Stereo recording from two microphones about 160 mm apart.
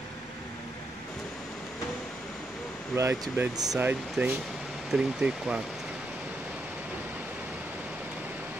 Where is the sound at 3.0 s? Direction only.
20° right (ahead or behind).